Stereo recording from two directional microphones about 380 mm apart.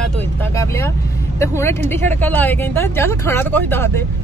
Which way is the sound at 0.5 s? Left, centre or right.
Centre.